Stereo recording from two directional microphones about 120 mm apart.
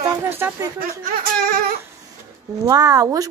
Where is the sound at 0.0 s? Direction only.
20° right (ahead or behind).